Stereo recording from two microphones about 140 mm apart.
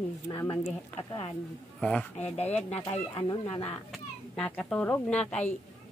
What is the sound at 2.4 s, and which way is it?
Speech, 10° left (ahead or behind).